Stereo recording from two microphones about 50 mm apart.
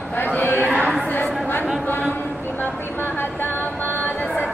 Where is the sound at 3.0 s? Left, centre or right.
Left.